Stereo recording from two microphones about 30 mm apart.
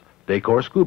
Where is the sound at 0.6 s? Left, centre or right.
Centre.